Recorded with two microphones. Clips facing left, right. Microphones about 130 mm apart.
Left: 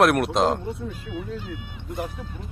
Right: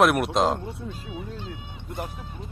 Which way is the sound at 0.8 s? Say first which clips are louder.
Left 3 dB; 25° right (ahead or behind).